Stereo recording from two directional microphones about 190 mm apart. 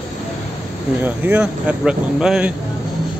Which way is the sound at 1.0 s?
10° right (ahead or behind).